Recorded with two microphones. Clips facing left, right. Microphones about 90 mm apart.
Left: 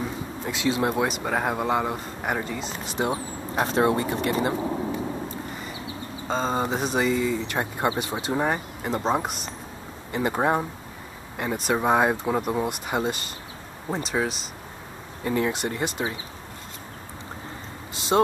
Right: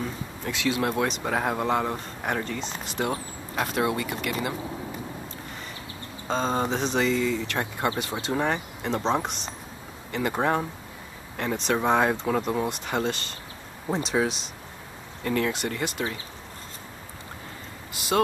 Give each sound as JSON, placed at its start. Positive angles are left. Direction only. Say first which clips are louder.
{"t": 0.0, "sound": "a sound", "louder": "left 2 dB", "side_deg": 20}
{"t": 1.0, "sound": "speech", "louder": "left 1 dB", "side_deg": 0}
{"t": 2.9, "sound": "speech", "louder": "left 2 dB", "side_deg": 20}
{"t": 3.5, "sound": "speech", "louder": "left 4 dB", "side_deg": 30}
{"t": 6.2, "sound": "speech", "louder": "even", "side_deg": 5}
{"t": 13.8, "sound": "speech", "louder": "right 1 dB", "side_deg": 0}
{"t": 15.2, "sound": "speech", "louder": "left 1 dB", "side_deg": 20}
{"t": 17.9, "sound": "vehicle", "louder": "left 3 dB", "side_deg": 25}